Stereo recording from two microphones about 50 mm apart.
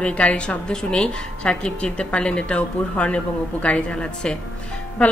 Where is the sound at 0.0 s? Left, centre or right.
Left.